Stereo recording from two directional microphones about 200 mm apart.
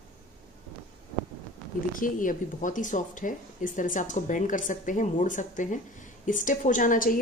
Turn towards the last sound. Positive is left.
turn(degrees=40)  # may be behind; listen again after turning